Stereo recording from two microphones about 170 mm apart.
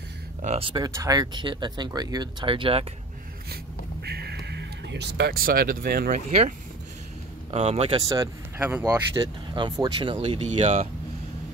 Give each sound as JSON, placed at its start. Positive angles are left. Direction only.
{"t": 0.4, "sound": "speech", "side_deg": -35}
{"t": 0.7, "sound": "speech", "side_deg": -20}
{"t": 4.0, "sound": "music", "side_deg": -75}
{"t": 7.5, "sound": "speech", "side_deg": -35}
{"t": 8.5, "sound": "speech", "side_deg": -10}
{"t": 8.8, "sound": "speech", "side_deg": -30}